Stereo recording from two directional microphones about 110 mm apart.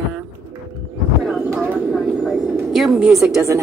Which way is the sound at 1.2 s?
Centre (ahead or behind).